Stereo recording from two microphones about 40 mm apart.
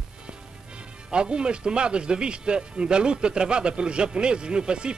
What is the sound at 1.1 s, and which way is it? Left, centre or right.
A man's voice, right.